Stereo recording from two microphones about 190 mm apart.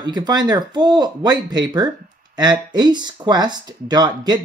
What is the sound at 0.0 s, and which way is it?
Speech, 20° right (ahead or behind).